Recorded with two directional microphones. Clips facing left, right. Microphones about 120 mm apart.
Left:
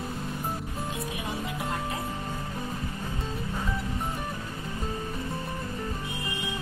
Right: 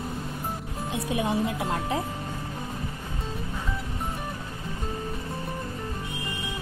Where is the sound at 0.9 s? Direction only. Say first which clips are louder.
Right 10 dB; 75° right (ahead or behind).